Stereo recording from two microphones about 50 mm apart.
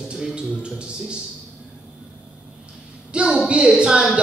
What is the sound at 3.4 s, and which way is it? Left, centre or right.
Speech, centre.